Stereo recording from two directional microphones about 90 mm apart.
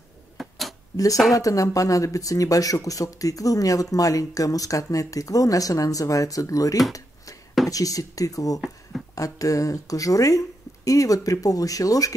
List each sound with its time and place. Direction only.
0.4 s a sound: centre (ahead or behind)
1.3 s speech: 40° left (ahead or behind)
8.5 s speech: centre (ahead or behind)
9.1 s speech: 40° left (ahead or behind)